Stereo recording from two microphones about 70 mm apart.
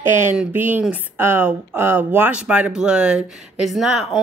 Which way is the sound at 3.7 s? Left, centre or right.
Centre.